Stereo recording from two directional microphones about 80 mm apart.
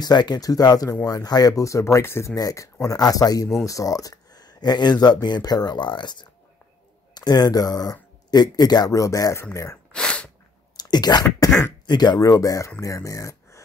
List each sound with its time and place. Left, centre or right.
0.0 s speech: left
2.3 s speech: left
7.2 s speech: left
9.9 s sneeze: centre
10.8 s speech: left
12.2 s speech: left